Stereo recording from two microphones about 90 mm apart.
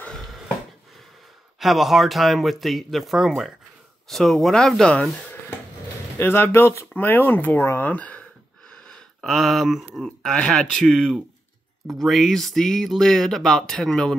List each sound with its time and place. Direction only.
0.0 s a sound: 5° left (ahead or behind)
1.6 s speech: centre (ahead or behind)
6.1 s speech: 25° left (ahead or behind); by 14.1 s 5° left (ahead or behind)